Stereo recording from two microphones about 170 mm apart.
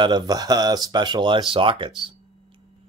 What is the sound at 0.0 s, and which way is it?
Speech, 25° right (ahead or behind).